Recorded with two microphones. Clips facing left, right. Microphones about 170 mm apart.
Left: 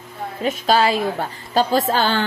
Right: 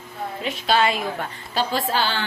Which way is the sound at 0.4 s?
40° left (ahead or behind).